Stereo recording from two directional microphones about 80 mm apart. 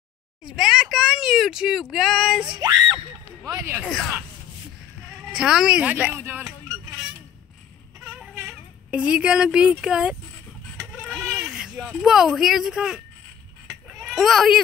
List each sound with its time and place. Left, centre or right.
0.5 s speech: centre
2.4 s speech: right
3.8 s speech: centre
5.3 s speech: centre; by 6.5 s right
8.0 s a sound: centre
8.9 s speech: centre
10.8 s sheep: centre
12.0 s speech: centre